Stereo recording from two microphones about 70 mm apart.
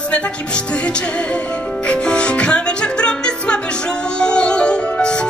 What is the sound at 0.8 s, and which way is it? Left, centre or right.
Music, centre.